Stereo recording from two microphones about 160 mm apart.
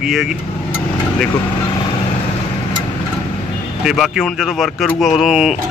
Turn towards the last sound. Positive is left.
turn(degrees=0)  # may be behind; listen again after turning